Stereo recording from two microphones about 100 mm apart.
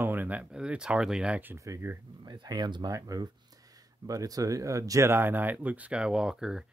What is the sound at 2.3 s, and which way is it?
Speech, 45° right (ahead or behind).